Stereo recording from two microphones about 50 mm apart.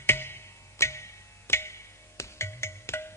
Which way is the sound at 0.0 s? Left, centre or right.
Left.